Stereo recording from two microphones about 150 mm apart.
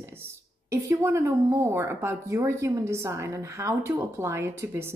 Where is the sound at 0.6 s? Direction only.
20° right (ahead or behind).